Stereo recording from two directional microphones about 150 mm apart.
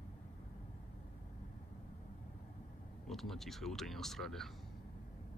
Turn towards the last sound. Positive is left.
turn(degrees=0)  # may be behind; listen again after turning